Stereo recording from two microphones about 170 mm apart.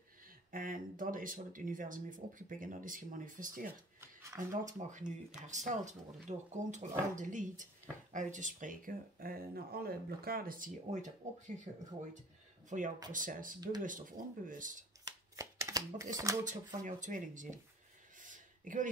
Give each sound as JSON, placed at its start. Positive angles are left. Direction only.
{"t": 0.5, "sound": "speech", "side_deg": -55}
{"t": 4.0, "sound": "speech", "side_deg": -15}
{"t": 4.7, "sound": "speech", "side_deg": -45}
{"t": 15.0, "sound": "shuffling cards", "side_deg": -20}
{"t": 16.4, "sound": "speech", "side_deg": -45}
{"t": 18.2, "sound": "a sound", "side_deg": -50}